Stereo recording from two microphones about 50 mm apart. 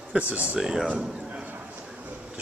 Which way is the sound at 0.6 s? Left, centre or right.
Centre.